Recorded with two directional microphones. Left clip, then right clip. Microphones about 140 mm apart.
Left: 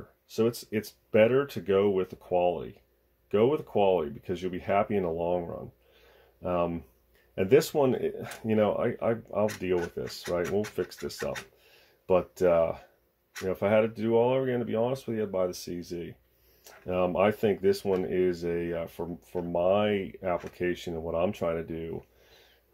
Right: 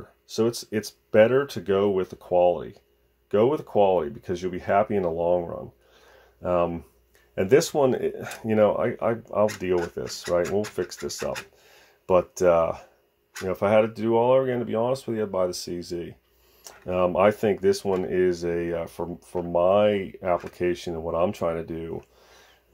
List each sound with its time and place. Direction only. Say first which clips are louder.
0.3 s speech: right 3 dB; 25° right (ahead or behind)